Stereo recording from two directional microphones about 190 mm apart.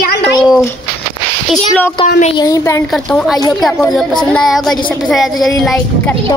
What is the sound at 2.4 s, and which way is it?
Speech, 15° left (ahead or behind).